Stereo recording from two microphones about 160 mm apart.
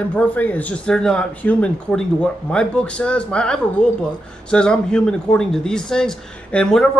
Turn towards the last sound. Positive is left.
turn(degrees=5)  # may be behind; listen again after turning